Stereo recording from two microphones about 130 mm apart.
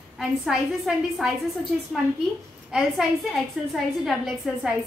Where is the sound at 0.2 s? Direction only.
5° right (ahead or behind).